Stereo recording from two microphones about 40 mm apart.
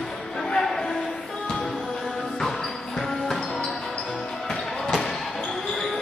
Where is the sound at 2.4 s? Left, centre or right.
Centre.